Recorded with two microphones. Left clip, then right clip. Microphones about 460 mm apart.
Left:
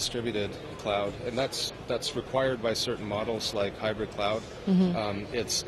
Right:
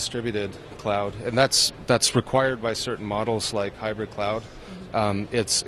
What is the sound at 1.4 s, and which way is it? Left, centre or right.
Speech, right.